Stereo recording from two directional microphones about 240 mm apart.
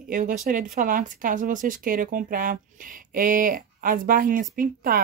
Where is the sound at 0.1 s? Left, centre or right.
Right.